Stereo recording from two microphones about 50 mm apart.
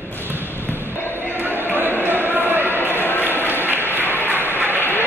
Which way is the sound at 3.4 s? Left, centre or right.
Right.